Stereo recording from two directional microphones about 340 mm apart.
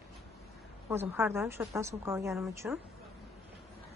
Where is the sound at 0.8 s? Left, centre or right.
Centre.